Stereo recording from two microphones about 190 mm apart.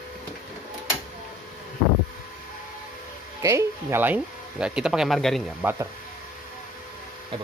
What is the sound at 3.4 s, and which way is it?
Speech, 15° right (ahead or behind).